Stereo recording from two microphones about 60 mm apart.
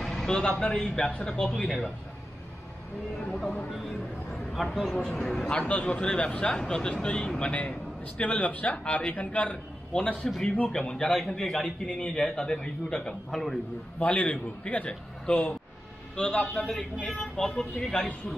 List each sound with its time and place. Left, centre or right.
0.3 s speech: centre
4.6 s a man's voice: centre
5.5 s a man's voice: centre
13.3 s a man's voice: centre
13.9 s a man's voice: left